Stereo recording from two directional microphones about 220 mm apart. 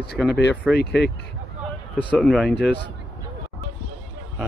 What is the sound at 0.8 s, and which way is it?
Speech, 50° left (ahead or behind).